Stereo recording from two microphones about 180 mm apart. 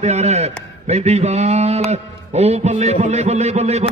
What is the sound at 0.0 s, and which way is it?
A man's voice, 35° right (ahead or behind).